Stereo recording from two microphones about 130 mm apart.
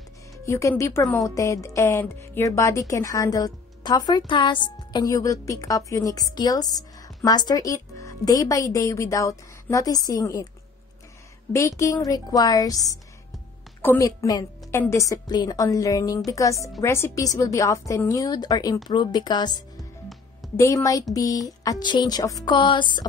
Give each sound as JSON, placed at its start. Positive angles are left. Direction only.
{"t": 0.5, "sound": "speech", "side_deg": 20}
{"t": 11.5, "sound": "a woman's voice", "side_deg": 20}
{"t": 21.1, "sound": "music", "side_deg": 25}